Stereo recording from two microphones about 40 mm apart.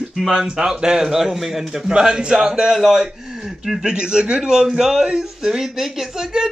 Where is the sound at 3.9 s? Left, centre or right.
Right.